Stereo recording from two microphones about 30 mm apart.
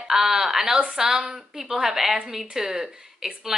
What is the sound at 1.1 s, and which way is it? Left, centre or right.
Speech, right.